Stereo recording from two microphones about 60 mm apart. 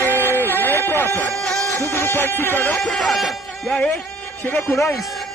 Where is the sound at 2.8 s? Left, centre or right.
Centre.